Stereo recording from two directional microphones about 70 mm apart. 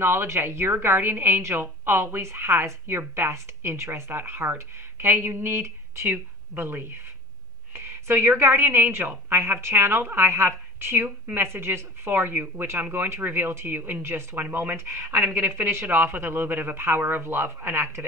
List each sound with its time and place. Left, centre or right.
0.0 s a woman's voice: right